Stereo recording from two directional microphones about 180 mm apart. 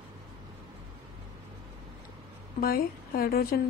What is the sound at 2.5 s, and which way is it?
A woman's voice, 55° left (ahead or behind).